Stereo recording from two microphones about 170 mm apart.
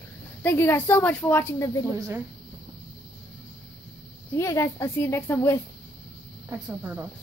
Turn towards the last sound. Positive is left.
turn(degrees=-10)  # may be behind; listen again after turning